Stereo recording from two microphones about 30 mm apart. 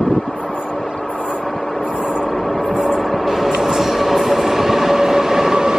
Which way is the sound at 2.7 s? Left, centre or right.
Right.